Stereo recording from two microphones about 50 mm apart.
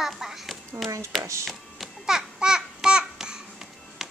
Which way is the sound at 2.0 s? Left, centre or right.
Centre.